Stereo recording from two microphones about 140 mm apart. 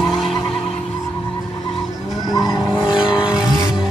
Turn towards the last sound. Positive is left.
turn(degrees=-5)  # may be behind; listen again after turning